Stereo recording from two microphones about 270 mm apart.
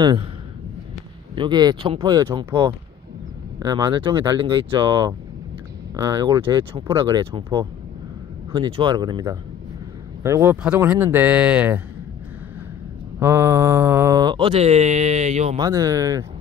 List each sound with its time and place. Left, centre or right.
1.3 s mantra: centre
10.2 s speech: centre
13.2 s mantra: centre